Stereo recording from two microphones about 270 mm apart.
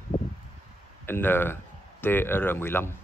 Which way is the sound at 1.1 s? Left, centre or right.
Centre.